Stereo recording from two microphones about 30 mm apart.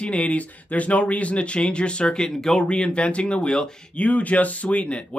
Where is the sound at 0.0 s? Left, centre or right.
Left.